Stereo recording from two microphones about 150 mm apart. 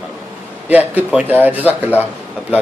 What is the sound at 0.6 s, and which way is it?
A man's voice, 10° right (ahead or behind).